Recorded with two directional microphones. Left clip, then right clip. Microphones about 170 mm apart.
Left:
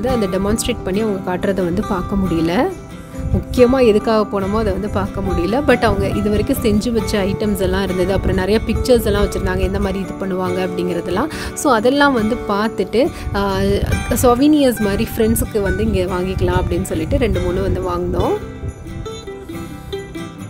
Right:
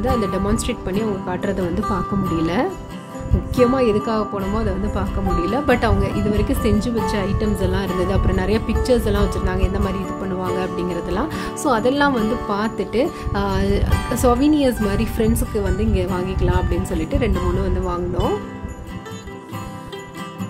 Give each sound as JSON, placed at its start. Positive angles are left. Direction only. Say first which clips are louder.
{"t": 0.0, "sound": "speech", "louder": "left 3 dB", "side_deg": 30}